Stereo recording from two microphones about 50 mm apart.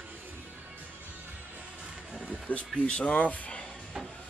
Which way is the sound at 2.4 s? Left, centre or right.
Left.